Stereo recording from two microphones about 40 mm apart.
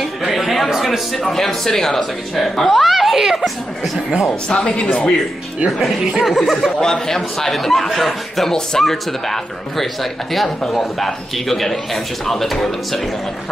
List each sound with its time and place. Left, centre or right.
0.0 s a sound: centre
0.7 s a man's voice: centre
4.3 s speech: left
4.8 s speech: left
5.7 s a man's voice: centre
6.8 s a man's voice: centre